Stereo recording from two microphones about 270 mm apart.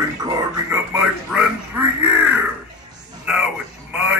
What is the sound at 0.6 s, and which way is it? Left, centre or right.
Speech, centre.